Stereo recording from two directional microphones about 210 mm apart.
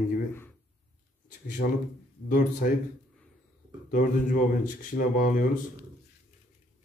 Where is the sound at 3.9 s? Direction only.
40° left (ahead or behind).